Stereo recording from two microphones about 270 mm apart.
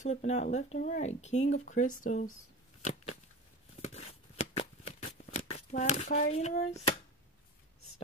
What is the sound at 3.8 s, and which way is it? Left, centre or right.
Shuffling cards, left.